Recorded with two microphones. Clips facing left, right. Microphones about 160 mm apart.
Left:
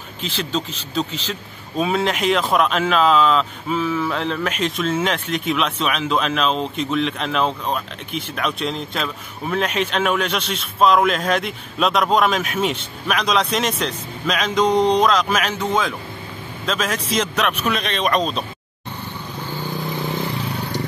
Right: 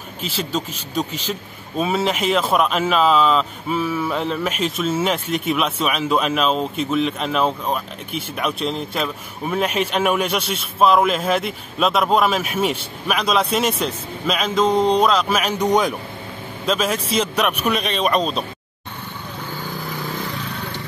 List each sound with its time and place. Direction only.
0.2 s speech: 10° right (ahead or behind)
20.0 s vehicle: 20° left (ahead or behind)
20.4 s vehicle: 35° left (ahead or behind)